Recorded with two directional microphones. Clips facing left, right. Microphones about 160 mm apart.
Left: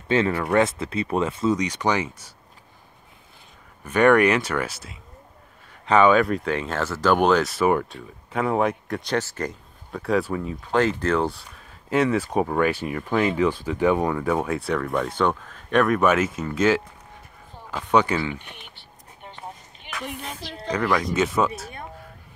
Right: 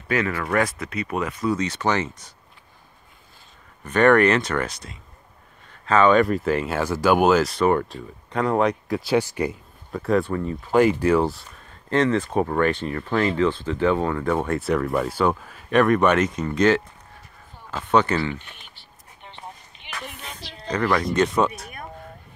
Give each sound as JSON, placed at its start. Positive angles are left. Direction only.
{"t": 0.1, "sound": "speech", "side_deg": 25}
{"t": 1.6, "sound": "speech", "side_deg": 15}
{"t": 3.8, "sound": "speech", "side_deg": 10}
{"t": 5.7, "sound": "a sound", "side_deg": 10}
{"t": 6.1, "sound": "speech", "side_deg": 0}
{"t": 17.9, "sound": "speech", "side_deg": 10}
{"t": 18.6, "sound": "a sound", "side_deg": 50}
{"t": 20.7, "sound": "speech", "side_deg": 5}